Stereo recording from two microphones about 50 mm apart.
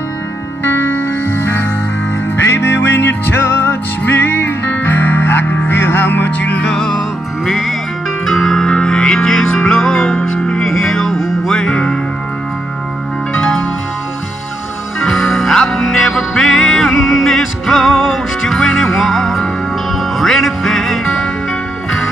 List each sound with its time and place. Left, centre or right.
0.8 s music: left
6.6 s music: centre
8.3 s music: centre
10.1 s music: left
10.6 s music: centre
11.1 s music: centre
11.5 s music: centre
15.0 s music: centre